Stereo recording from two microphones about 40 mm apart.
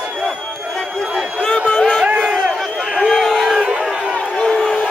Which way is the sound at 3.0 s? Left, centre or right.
Centre.